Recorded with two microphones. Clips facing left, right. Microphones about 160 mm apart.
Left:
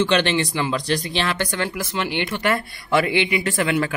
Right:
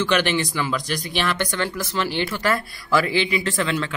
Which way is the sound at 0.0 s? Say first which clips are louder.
Left 2 dB; 25° left (ahead or behind).